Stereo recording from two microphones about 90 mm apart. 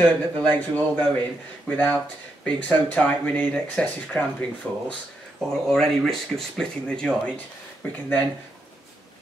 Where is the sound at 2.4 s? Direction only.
15° left (ahead or behind).